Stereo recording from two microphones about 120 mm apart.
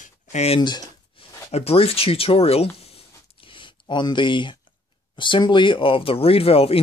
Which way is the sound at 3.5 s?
40° left (ahead or behind).